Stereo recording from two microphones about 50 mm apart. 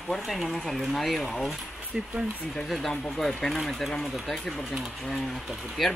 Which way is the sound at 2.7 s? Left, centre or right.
Centre.